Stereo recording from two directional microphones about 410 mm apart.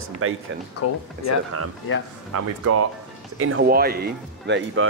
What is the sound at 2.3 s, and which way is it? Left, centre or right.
Speech, right.